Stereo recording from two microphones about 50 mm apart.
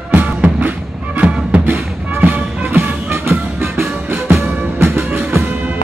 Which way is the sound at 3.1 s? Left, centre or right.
Right.